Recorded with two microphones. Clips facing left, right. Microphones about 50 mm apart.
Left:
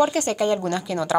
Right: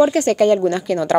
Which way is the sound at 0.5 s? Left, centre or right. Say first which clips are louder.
Right 7 dB; right.